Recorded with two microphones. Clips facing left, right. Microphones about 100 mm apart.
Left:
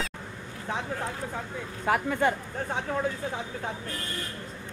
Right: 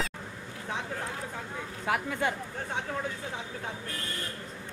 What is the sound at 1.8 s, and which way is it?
Speech, 50° left (ahead or behind).